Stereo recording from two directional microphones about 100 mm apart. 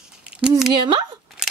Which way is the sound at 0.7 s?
50° right (ahead or behind).